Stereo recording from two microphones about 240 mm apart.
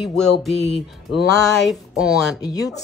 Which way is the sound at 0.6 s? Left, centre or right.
Left.